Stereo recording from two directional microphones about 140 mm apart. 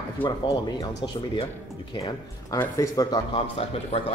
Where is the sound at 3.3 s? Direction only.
40° left (ahead or behind).